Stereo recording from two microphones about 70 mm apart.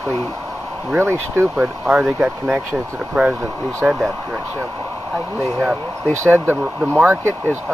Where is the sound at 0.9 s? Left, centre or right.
Right.